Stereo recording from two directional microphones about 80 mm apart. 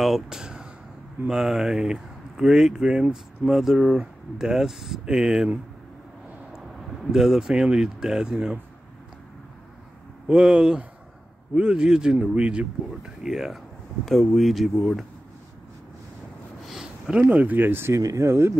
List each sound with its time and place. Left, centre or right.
0.0 s speech: centre
7.1 s speech: centre
10.2 s speech: centre
16.6 s a sound: centre
17.3 s speech: right